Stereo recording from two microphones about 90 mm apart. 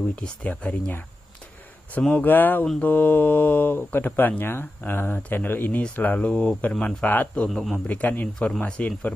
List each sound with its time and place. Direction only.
0.1 s speech: 15° left (ahead or behind)
7.4 s a man's voice: 5° left (ahead or behind)
7.8 s speech: 15° left (ahead or behind)